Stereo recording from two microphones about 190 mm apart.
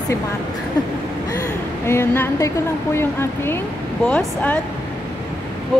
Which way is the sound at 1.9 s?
15° left (ahead or behind).